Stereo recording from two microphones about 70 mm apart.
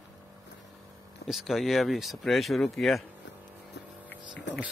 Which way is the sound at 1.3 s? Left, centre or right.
Centre.